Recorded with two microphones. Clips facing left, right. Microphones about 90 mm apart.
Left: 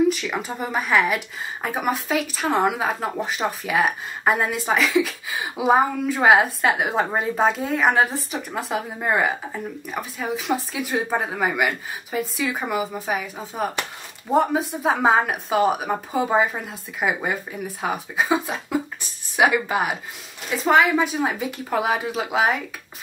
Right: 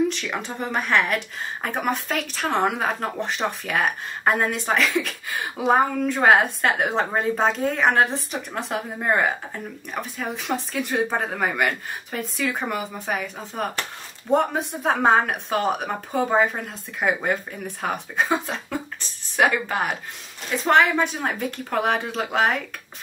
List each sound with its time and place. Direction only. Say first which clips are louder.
0.1 s speech: left 3 dB; 5° left (ahead or behind)